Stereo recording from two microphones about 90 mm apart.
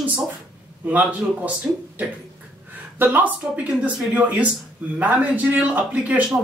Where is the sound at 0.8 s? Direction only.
15° right (ahead or behind).